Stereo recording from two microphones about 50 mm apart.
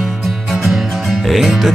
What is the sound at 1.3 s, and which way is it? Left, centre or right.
Music, centre.